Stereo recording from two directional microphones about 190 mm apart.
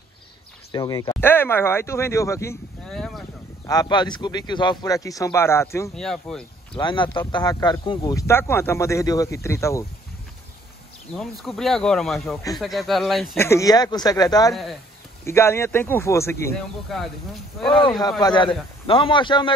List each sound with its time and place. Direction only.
0.7 s speech: 20° left (ahead or behind)
2.9 s speech: centre (ahead or behind)
3.6 s speech: 20° left (ahead or behind)
5.9 s speech: 5° left (ahead or behind)
6.7 s speech: 25° left (ahead or behind)
11.1 s speech: centre (ahead or behind)
13.4 s speech: 15° left (ahead or behind)
14.5 s speech: centre (ahead or behind)
15.2 s speech: 15° left (ahead or behind)
16.9 s speech: centre (ahead or behind)
17.7 s speech: 25° left (ahead or behind)